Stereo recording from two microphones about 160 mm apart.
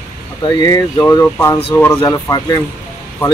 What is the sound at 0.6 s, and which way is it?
Speech, 25° left (ahead or behind).